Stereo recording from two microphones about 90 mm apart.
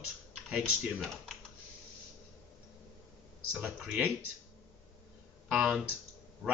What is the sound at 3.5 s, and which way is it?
Speech, 5° right (ahead or behind).